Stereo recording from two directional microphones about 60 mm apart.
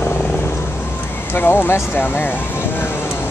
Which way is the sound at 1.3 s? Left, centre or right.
Left.